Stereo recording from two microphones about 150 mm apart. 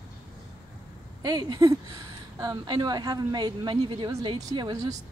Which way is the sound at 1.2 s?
25° right (ahead or behind).